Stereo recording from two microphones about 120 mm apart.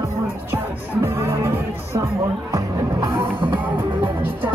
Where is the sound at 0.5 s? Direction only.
20° right (ahead or behind).